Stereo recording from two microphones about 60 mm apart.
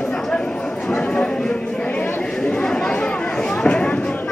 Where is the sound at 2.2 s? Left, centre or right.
Centre.